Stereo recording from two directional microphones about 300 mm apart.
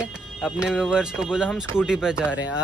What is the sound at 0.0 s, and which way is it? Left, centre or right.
Speech, centre.